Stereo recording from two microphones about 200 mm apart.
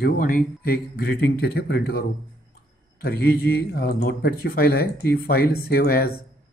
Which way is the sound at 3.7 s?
50° left (ahead or behind).